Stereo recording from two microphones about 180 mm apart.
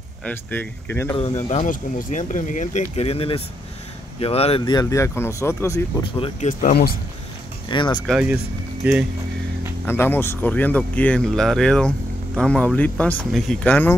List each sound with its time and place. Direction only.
0.2 s speech: 10° left (ahead or behind)
1.1 s speech: 40° left (ahead or behind); by 5.9 s 15° left (ahead or behind)
6.1 s speech: 30° left (ahead or behind)
6.6 s speech: 60° left (ahead or behind)
7.6 s speech: 25° left (ahead or behind)
8.1 s speech: 5° right (ahead or behind)
9.8 s speech: 10° left (ahead or behind)